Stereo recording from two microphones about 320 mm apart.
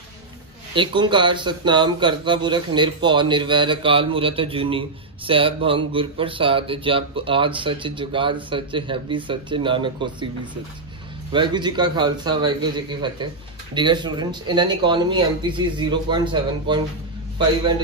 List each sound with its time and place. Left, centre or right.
0.7 s speech: centre
11.3 s speech: centre